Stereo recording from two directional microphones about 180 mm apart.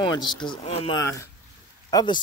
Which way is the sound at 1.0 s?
15° left (ahead or behind).